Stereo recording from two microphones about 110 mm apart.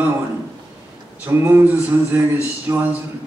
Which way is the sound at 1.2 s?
20° right (ahead or behind).